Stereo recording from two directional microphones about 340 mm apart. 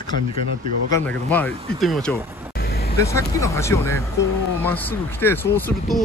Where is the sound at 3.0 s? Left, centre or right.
Centre.